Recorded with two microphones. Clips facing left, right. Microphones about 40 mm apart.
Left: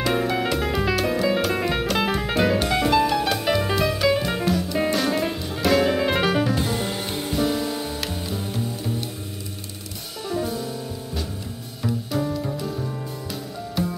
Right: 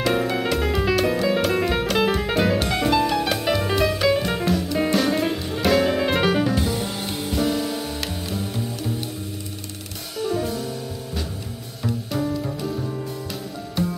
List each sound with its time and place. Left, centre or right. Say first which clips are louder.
0.0 s music: right 1 dB; centre
6.8 s music: even; left
7.3 s music: even; centre
10.2 s music: right 2 dB; centre
11.8 s music: even; centre